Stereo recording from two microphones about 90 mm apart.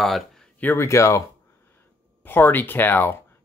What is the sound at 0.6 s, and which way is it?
Speech, 30° left (ahead or behind).